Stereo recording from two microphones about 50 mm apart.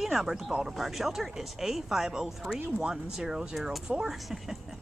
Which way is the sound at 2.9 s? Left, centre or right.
Centre.